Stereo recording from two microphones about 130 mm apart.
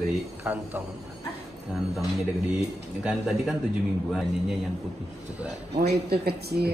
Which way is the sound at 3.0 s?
5° right (ahead or behind).